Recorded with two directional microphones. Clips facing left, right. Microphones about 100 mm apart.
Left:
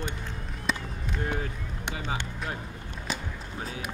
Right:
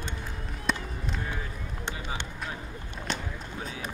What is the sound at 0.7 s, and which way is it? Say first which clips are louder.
Run: right 1 dB; centre (ahead or behind).